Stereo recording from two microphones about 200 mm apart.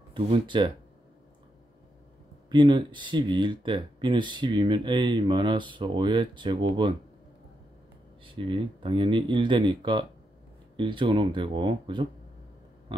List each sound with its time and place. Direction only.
0.1 s speech: 25° right (ahead or behind)
2.5 s speech: 25° right (ahead or behind)
8.4 s speech: 25° right (ahead or behind)